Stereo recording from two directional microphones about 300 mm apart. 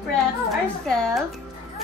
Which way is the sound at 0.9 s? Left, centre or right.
Centre.